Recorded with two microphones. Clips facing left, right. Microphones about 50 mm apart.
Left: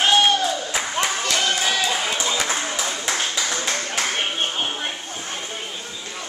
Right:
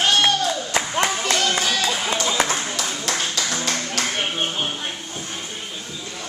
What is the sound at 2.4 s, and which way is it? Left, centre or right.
Clapping, centre.